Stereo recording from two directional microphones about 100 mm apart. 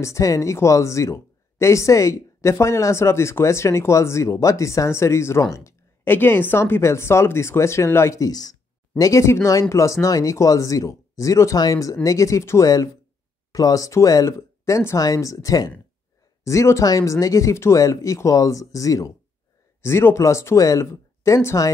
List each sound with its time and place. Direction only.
0.0 s speech: 30° left (ahead or behind)